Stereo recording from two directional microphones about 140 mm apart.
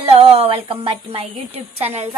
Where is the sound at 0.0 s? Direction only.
45° right (ahead or behind).